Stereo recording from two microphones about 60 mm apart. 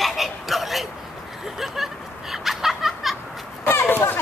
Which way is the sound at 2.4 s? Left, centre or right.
Centre.